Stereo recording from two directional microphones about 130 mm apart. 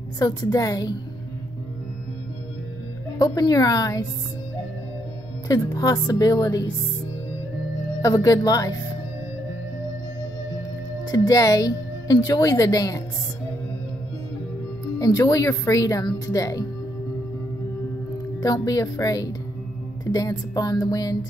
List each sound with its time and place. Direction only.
0.2 s speech: 30° left (ahead or behind)
3.2 s speech: 30° left (ahead or behind)
5.5 s speech: 30° left (ahead or behind)
8.0 s speech: 25° left (ahead or behind)
11.1 s speech: 25° left (ahead or behind)
15.0 s speech: 25° left (ahead or behind)
18.4 s speech: 30° left (ahead or behind)